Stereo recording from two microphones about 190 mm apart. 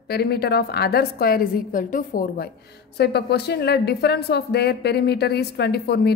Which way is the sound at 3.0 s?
60° left (ahead or behind).